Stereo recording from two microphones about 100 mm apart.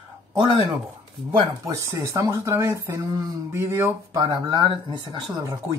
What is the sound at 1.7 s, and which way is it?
Speech, 35° right (ahead or behind).